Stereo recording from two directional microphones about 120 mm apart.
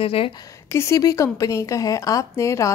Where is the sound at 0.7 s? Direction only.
25° left (ahead or behind).